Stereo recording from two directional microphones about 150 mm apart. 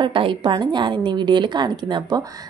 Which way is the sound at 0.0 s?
35° right (ahead or behind).